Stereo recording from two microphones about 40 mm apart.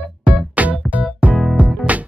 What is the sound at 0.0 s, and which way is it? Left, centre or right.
Music, right.